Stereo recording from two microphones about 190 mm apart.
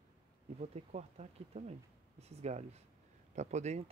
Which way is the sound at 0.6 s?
35° right (ahead or behind).